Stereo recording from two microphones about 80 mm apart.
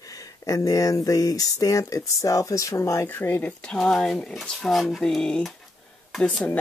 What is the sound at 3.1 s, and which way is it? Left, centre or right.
Speech, left.